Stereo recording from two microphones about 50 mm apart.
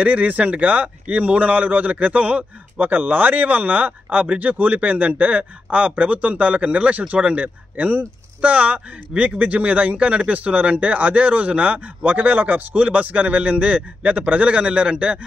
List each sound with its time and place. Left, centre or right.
0.0 s speech: right